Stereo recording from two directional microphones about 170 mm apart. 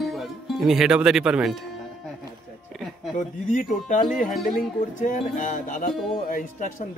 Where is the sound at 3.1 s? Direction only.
50° left (ahead or behind).